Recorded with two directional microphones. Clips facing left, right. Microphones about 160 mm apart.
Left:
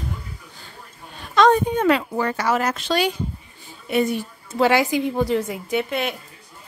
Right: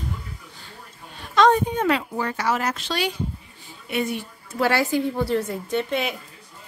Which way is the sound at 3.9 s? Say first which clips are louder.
Left 5 dB; 40° left (ahead or behind).